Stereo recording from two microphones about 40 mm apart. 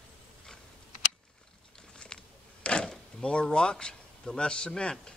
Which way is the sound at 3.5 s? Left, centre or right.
Left.